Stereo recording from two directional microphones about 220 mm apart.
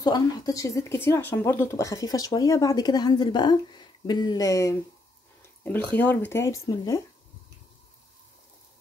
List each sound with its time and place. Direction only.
0.0 s speech: 20° left (ahead or behind)